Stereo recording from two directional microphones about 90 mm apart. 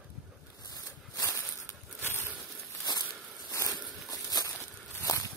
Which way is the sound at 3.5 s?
40° left (ahead or behind).